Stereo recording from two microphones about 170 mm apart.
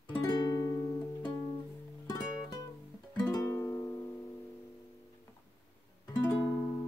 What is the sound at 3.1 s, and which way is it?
Music, 25° left (ahead or behind).